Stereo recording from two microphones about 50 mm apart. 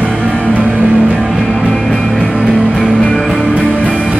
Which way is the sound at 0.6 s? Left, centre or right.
Right.